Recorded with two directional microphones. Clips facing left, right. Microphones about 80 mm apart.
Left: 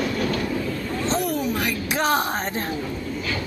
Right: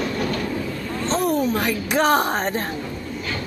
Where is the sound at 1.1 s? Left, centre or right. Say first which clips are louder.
Right 5 dB; right.